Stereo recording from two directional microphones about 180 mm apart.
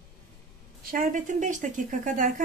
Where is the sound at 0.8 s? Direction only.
50° right (ahead or behind).